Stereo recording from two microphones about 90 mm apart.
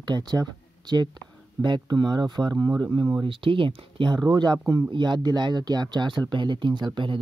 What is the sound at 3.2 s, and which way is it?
Speech, 70° right (ahead or behind).